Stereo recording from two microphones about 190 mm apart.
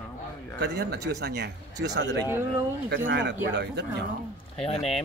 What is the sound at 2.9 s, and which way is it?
Speech, 70° right (ahead or behind).